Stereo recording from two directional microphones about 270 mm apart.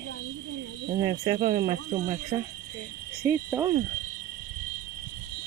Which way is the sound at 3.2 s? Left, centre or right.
Centre.